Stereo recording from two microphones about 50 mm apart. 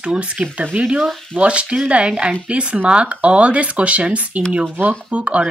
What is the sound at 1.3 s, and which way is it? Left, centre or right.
Speech, right.